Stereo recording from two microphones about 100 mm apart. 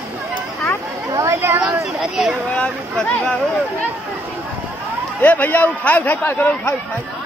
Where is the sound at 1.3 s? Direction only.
25° right (ahead or behind).